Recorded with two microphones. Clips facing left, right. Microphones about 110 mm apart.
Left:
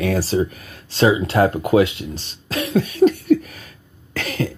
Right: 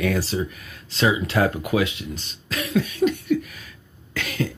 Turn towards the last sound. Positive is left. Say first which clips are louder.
# left 3 dB
turn(degrees=45)  # may be behind; listen again after turning